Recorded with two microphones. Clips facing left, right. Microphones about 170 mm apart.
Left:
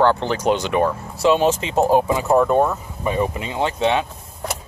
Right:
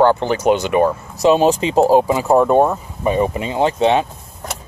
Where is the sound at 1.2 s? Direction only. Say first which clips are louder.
Right 4 dB; 40° right (ahead or behind).